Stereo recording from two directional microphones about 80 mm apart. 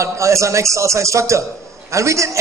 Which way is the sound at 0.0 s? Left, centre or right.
Right.